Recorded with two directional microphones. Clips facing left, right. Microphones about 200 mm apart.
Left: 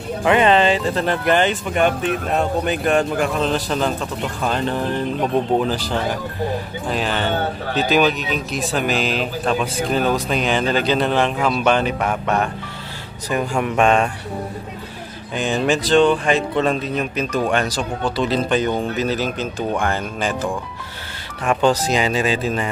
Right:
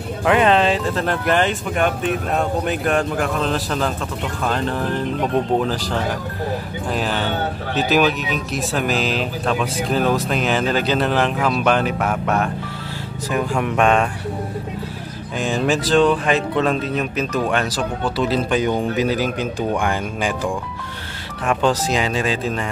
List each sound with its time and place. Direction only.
0.2 s speech: centre (ahead or behind)
15.3 s speech: centre (ahead or behind)
21.5 s speech: centre (ahead or behind)